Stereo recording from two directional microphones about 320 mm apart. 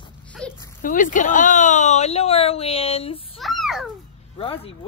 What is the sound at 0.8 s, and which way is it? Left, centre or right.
Speech, left.